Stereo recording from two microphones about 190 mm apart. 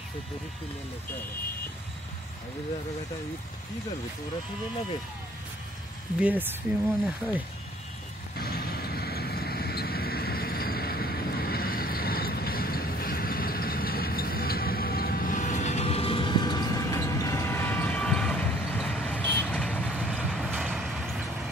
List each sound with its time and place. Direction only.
6.1 s speech: 5° right (ahead or behind)
8.4 s vehicle: 55° left (ahead or behind); by 21.2 s centre (ahead or behind)